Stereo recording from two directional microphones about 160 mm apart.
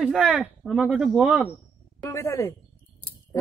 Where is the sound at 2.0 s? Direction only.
20° left (ahead or behind).